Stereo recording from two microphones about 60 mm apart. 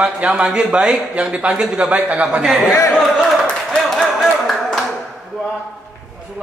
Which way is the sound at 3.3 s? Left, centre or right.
Centre.